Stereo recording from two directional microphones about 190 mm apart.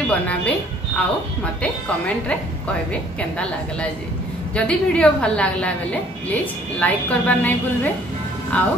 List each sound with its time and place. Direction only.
0.9 s a woman's voice: 5° left (ahead or behind)